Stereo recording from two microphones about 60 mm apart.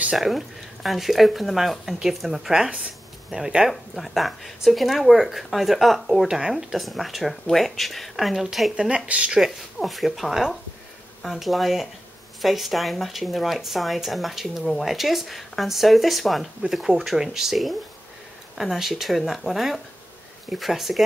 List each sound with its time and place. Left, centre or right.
0.2 s speech: centre
8.7 s speech: centre
9.4 s speech: centre